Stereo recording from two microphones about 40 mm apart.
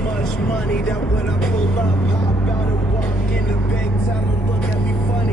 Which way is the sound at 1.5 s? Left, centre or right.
Left.